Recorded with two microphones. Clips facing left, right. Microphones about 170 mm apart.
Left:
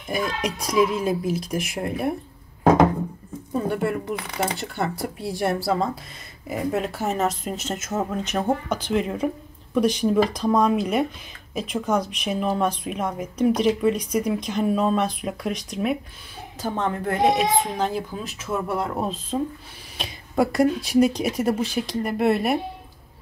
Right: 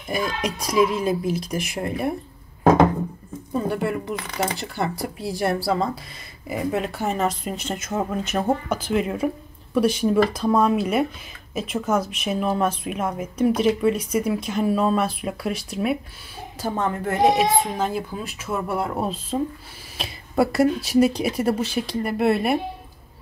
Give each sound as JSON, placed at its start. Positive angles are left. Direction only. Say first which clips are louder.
{"t": 0.1, "sound": "speech", "louder": "even", "side_deg": 0}
{"t": 3.5, "sound": "speech", "louder": "even", "side_deg": 0}